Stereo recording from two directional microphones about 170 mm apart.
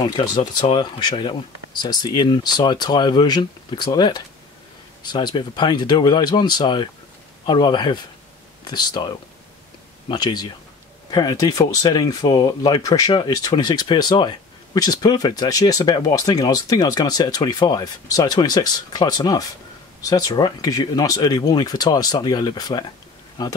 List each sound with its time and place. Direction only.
0.0 s speech: 25° left (ahead or behind)